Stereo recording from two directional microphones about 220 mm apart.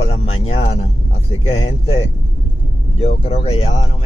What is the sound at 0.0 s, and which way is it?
Music, 25° left (ahead or behind).